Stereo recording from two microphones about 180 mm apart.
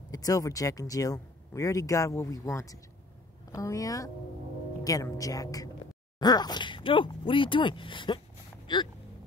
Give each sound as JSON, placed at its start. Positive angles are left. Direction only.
{"t": 0.1, "sound": "speech", "side_deg": 20}